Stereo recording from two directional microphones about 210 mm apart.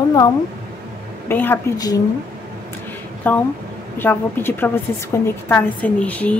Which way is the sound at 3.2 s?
10° left (ahead or behind).